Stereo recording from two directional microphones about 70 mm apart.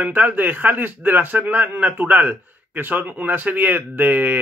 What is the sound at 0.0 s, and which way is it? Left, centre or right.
Speech, right.